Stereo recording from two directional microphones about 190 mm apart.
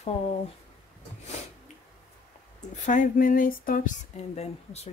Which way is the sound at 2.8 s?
40° left (ahead or behind).